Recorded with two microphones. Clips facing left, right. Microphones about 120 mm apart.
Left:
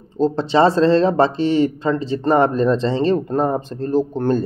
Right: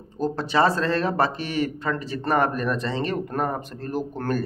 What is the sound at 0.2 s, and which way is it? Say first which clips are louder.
Speech: left 6 dB; 25° left (ahead or behind).